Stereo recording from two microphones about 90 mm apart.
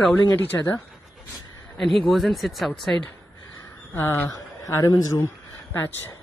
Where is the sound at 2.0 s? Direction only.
Centre (ahead or behind).